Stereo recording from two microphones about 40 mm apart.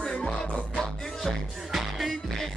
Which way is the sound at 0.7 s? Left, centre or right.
Centre.